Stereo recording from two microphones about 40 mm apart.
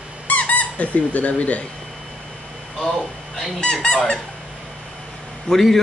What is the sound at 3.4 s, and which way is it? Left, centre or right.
Speech, centre.